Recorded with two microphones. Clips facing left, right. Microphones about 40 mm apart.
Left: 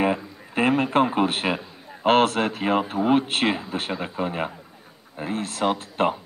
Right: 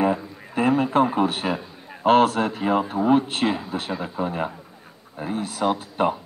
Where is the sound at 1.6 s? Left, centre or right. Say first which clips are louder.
Right 1 dB; centre.